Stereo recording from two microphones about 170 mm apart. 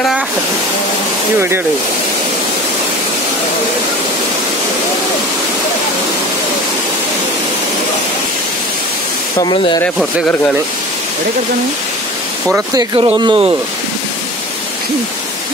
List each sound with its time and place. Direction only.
9.4 s speech: 30° left (ahead or behind)
9.9 s speech: 5° left (ahead or behind)
12.5 s speech: 25° right (ahead or behind)